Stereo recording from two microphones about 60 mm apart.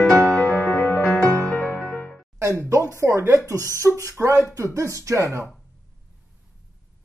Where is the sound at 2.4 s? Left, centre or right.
Right.